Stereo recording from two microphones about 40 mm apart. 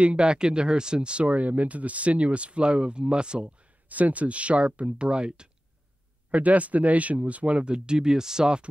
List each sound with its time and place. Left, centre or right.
0.0 s speech: right
3.9 s speech: right
6.3 s speech: right; by 8.6 s centre